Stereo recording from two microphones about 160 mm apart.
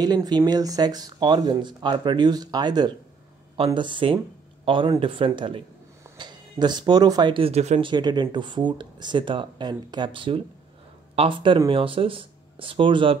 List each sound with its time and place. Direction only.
0.0 s speech: 25° right (ahead or behind); by 7.8 s 45° right (ahead or behind)
7.8 s speech: 25° right (ahead or behind)